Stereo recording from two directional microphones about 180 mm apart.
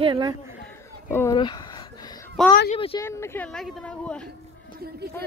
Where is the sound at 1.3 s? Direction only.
25° left (ahead or behind).